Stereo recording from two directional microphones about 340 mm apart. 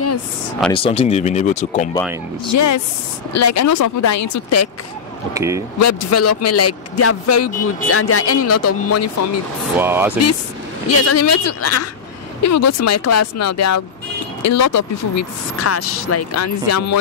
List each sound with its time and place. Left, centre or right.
0.7 s speech: centre
2.5 s speech: left
5.3 s speech: centre
5.8 s speech: left
9.8 s speech: centre
10.9 s speech: left